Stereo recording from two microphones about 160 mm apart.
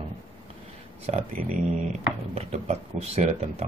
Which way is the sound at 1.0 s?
45° right (ahead or behind).